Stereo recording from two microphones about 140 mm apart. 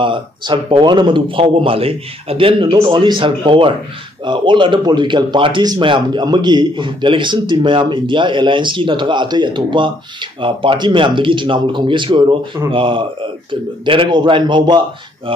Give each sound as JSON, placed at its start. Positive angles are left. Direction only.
{"t": 0.0, "sound": "speech", "side_deg": -35}